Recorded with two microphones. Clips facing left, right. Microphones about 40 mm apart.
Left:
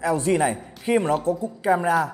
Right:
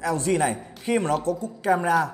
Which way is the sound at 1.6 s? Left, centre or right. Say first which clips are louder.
Left 1 dB; centre.